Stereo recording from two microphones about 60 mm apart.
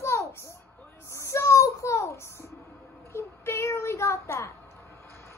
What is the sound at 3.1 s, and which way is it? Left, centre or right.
Child singing, left.